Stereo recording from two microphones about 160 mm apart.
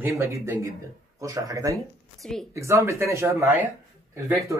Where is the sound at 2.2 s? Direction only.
5° left (ahead or behind).